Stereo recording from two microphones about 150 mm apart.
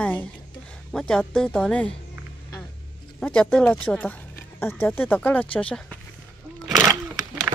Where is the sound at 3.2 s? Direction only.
10° left (ahead or behind).